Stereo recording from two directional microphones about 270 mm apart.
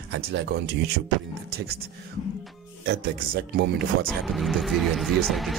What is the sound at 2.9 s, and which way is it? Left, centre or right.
Speech, right.